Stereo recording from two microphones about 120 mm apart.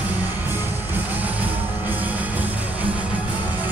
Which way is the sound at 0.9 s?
15° right (ahead or behind).